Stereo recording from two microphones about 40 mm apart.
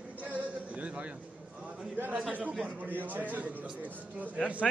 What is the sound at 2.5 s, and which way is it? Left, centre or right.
Speech, right.